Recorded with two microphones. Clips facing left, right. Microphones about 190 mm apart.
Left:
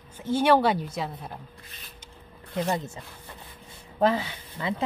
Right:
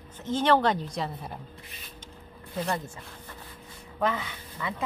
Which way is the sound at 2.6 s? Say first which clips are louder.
Left 3 dB; 20° left (ahead or behind).